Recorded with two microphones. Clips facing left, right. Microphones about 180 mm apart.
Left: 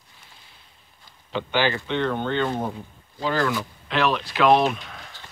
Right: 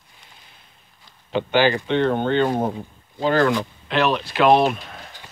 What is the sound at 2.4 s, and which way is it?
Speech, 40° right (ahead or behind).